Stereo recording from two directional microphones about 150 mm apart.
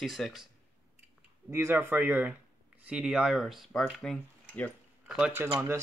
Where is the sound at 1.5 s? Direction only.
15° right (ahead or behind); by 4.7 s 5° left (ahead or behind).